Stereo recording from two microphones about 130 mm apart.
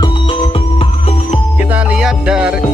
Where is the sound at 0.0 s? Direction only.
40° left (ahead or behind).